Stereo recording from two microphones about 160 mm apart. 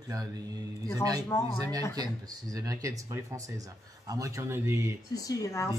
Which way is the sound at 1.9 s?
25° right (ahead or behind).